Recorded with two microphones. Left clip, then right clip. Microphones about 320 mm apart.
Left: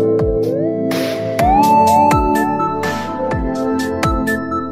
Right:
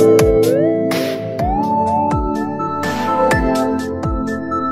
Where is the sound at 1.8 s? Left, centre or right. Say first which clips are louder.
Left 6 dB; left.